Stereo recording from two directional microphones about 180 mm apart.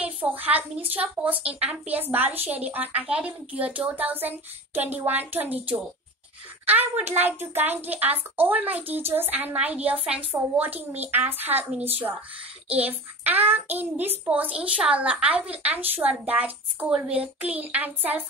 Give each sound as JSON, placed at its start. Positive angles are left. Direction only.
{"t": 0.0, "sound": "a child's voice", "side_deg": -10}
{"t": 6.6, "sound": "a child's voice", "side_deg": -10}